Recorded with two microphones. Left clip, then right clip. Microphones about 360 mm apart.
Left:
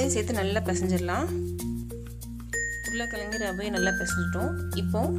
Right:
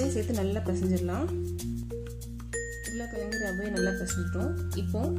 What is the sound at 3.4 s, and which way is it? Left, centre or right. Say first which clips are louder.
Music: left 3 dB; left.